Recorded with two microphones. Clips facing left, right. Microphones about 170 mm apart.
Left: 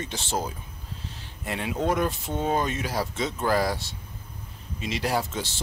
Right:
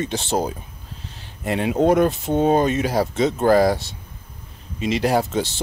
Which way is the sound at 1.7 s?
40° right (ahead or behind).